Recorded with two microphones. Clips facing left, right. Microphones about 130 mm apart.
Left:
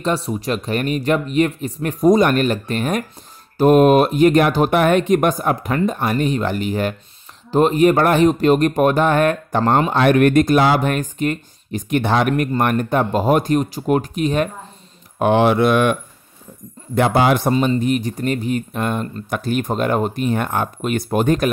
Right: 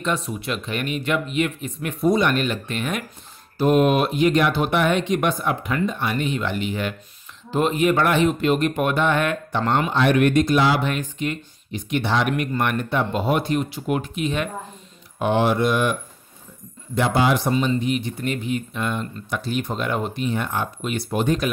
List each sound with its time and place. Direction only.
0.0 s speech: 35° left (ahead or behind)
9.9 s speech: 50° left (ahead or behind)
15.1 s speech: 65° left (ahead or behind)
16.9 s speech: 55° left (ahead or behind)